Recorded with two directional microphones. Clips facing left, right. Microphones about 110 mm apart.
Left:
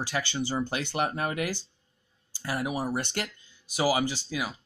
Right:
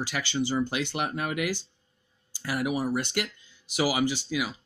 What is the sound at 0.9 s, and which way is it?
Speech, 35° left (ahead or behind).